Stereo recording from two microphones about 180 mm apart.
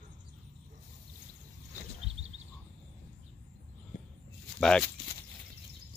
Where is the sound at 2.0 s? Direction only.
35° right (ahead or behind).